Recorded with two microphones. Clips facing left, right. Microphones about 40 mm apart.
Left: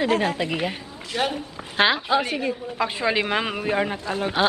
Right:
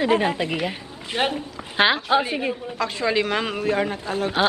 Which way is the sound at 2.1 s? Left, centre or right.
Centre.